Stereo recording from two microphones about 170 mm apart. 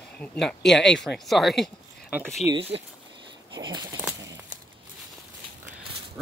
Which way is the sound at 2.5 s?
35° right (ahead or behind).